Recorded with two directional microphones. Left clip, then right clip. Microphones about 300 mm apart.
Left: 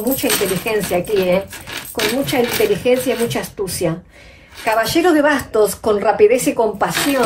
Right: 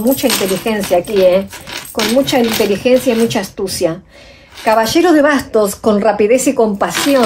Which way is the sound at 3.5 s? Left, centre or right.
Right.